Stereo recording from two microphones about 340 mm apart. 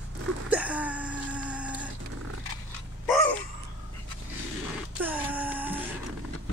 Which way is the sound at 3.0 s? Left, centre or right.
Centre.